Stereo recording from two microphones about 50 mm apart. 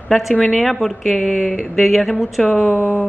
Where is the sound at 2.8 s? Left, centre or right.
Left.